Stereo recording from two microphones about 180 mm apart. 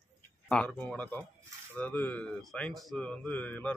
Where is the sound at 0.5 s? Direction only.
5° left (ahead or behind).